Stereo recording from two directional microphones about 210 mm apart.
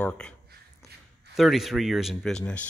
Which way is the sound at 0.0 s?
5° left (ahead or behind).